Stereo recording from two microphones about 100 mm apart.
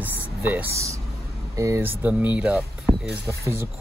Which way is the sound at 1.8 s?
20° right (ahead or behind).